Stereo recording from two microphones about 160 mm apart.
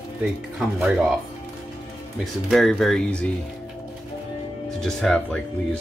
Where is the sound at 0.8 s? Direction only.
5° right (ahead or behind).